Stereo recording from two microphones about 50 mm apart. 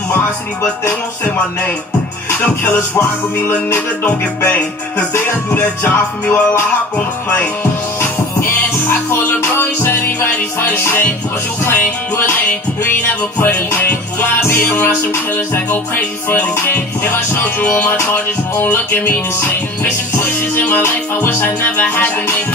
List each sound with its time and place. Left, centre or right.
3.0 s music: left
5.1 s music: left
8.0 s music: left
17.8 s music: left
20.8 s music: left
21.6 s music: left